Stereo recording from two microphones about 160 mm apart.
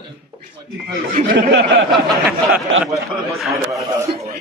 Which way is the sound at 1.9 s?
5° right (ahead or behind).